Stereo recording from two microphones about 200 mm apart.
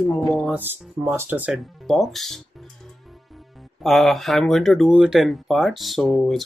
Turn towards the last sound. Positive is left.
turn(degrees=0)  # may be behind; listen again after turning